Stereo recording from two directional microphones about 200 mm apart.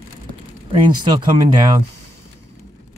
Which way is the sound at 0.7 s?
25° right (ahead or behind).